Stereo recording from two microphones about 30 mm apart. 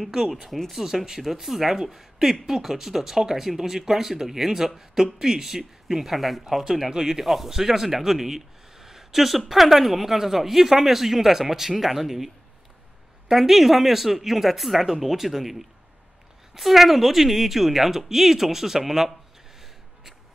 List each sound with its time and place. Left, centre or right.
0.5 s speech: centre
0.8 s speech: centre
6.9 s speech: centre
7.2 s speech: centre
13.3 s speech: centre
16.5 s speech: centre